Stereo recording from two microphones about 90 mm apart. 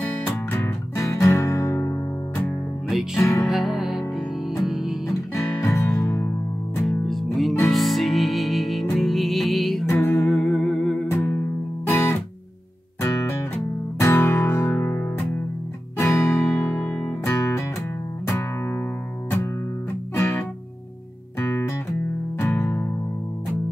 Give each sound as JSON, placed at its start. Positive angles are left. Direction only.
{"t": 0.5, "sound": "music", "side_deg": 30}
{"t": 3.2, "sound": "music", "side_deg": 30}
{"t": 3.4, "sound": "music", "side_deg": 0}
{"t": 5.3, "sound": "music", "side_deg": 30}
{"t": 6.8, "sound": "music", "side_deg": 0}
{"t": 11.1, "sound": "music", "side_deg": 25}
{"t": 17.2, "sound": "music", "side_deg": 35}
{"t": 20.2, "sound": "music", "side_deg": 20}